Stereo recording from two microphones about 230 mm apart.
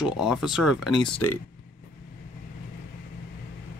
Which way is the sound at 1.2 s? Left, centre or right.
Left.